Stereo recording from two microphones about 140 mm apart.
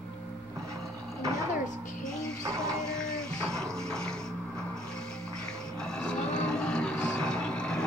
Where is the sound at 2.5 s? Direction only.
20° right (ahead or behind).